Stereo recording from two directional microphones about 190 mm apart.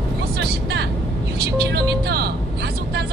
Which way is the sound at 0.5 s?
55° right (ahead or behind).